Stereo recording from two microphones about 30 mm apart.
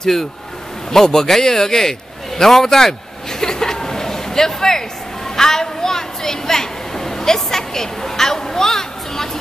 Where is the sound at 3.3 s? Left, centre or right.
Centre.